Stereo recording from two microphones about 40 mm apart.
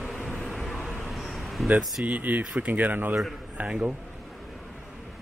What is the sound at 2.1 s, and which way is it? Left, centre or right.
Speech, right.